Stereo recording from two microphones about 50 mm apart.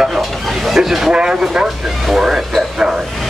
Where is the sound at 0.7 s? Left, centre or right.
Centre.